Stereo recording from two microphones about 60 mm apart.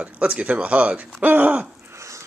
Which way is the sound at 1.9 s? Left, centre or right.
Right.